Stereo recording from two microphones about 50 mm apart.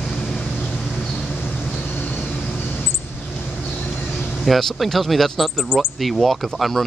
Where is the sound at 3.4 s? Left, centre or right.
Left.